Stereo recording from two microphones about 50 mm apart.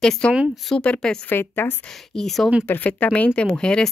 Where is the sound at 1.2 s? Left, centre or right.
Left.